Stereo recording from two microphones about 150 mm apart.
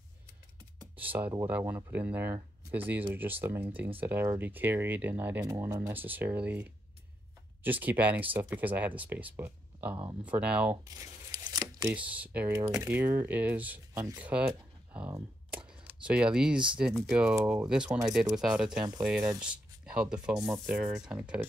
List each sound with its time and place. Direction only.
0.9 s speech: 10° right (ahead or behind)
5.4 s speech: 25° right (ahead or behind); by 10.8 s 10° right (ahead or behind)
10.9 s tearing: 25° right (ahead or behind)
11.9 s speech: 10° right (ahead or behind)